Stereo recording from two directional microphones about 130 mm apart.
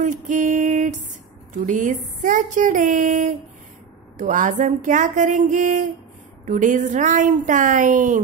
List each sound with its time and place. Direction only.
0.0 s a woman's voice: 70° right (ahead or behind)